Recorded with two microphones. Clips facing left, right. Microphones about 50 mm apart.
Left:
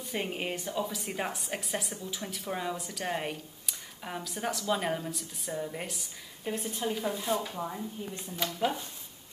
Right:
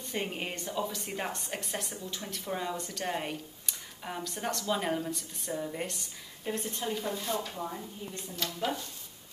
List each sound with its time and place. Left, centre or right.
0.0 s a woman's voice: centre